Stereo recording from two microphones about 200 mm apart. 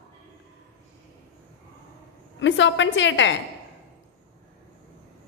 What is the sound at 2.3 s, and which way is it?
A woman's voice, 65° left (ahead or behind).